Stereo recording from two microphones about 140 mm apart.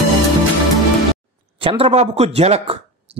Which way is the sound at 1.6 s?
45° right (ahead or behind).